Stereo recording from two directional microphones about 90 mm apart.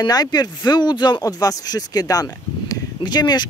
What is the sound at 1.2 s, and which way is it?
Speech, 45° left (ahead or behind).